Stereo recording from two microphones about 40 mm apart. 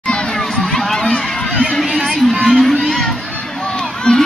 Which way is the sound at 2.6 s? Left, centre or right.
Centre.